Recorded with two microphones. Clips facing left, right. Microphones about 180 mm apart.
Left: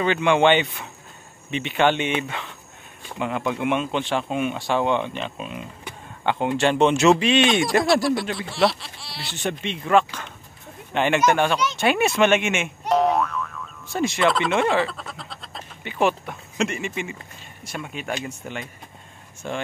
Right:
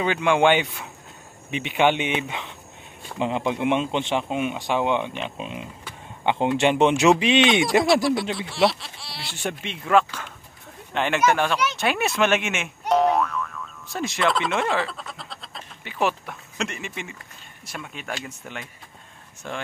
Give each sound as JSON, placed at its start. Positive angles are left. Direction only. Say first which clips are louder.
{"t": 0.0, "sound": "speech", "louder": "left 1 dB", "side_deg": -5}
{"t": 7.8, "sound": "speech", "louder": "even", "side_deg": 0}